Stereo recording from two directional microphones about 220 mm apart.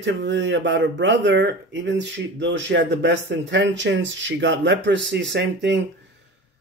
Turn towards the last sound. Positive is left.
turn(degrees=-50)  # may be behind; listen again after turning